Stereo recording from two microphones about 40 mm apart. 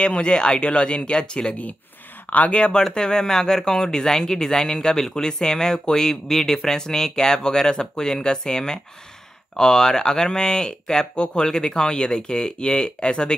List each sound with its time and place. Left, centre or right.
0.0 s speech: left
2.2 s speech: left
2.6 s speech: left